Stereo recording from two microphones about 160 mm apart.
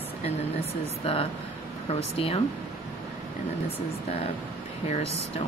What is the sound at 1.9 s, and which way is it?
Speech, 40° left (ahead or behind).